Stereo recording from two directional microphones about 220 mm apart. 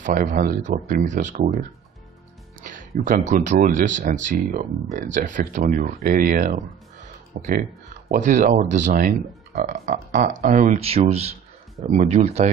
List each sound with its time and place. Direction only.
0.0 s speech: 35° right (ahead or behind)
2.6 s speech: 35° right (ahead or behind)